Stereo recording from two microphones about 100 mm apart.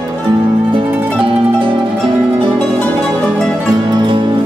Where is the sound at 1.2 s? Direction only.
60° right (ahead or behind).